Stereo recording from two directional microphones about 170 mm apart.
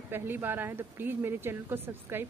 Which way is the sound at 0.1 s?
10° right (ahead or behind).